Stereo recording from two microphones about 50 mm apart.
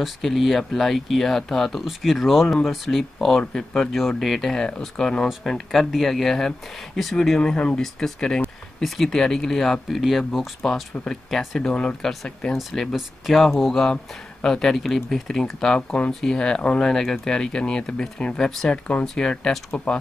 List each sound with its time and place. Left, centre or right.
0.0 s speech: centre
1.9 s speech: centre
7.8 s speech: centre
11.7 s speech: centre
12.9 s speech: centre
19.7 s speech: left